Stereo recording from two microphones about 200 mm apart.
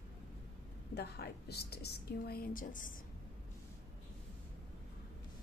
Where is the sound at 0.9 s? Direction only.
55° left (ahead or behind).